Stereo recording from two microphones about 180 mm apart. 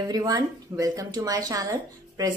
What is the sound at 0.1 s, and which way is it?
Speech, 20° right (ahead or behind).